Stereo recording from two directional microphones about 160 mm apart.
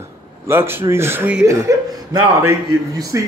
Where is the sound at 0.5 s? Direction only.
15° right (ahead or behind).